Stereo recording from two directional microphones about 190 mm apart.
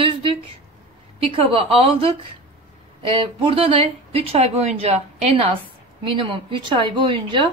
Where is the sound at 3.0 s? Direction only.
25° right (ahead or behind).